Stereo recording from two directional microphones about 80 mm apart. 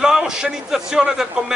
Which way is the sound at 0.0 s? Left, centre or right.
Centre.